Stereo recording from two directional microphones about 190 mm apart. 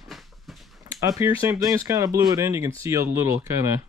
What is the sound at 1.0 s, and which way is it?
Speech, 20° right (ahead or behind).